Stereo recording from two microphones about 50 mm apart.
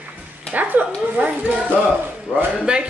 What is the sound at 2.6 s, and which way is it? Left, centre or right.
Speech, centre.